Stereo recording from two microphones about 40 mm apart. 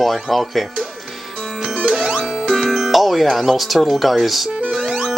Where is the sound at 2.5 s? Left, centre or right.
Centre.